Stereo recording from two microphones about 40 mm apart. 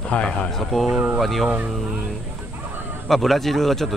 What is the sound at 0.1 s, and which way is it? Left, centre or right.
Speech, left.